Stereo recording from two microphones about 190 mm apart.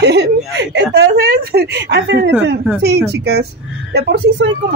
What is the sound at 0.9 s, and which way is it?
A woman's voice, 55° right (ahead or behind).